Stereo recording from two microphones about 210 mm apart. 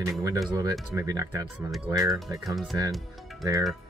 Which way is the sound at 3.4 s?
15° right (ahead or behind).